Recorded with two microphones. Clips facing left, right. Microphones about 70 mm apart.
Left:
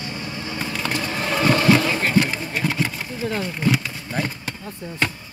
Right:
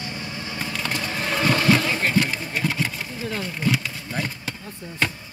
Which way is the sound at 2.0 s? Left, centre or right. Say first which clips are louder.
Left 2 dB; centre.